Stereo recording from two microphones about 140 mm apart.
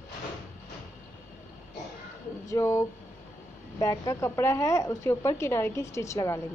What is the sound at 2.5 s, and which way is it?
A woman's voice, 20° left (ahead or behind).